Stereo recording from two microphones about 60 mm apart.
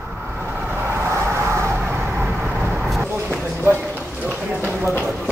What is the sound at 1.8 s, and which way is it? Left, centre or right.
Vehicle, right.